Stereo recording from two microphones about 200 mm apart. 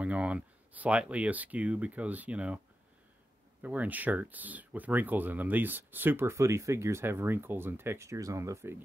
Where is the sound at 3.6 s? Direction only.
10° right (ahead or behind).